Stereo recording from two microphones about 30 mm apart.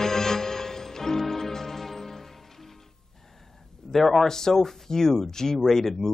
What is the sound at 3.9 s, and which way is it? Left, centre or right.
Speech, centre.